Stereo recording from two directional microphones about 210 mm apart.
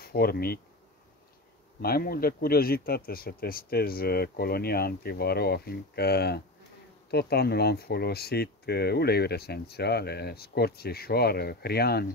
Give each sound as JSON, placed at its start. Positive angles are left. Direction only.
{"t": 0.0, "sound": "speech", "side_deg": 45}
{"t": 1.8, "sound": "speech", "side_deg": 45}